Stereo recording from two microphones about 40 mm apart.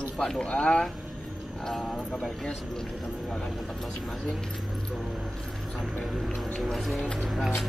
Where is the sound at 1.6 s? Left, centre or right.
Centre.